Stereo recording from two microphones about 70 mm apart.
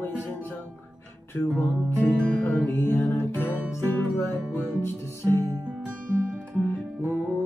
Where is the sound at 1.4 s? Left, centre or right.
Left.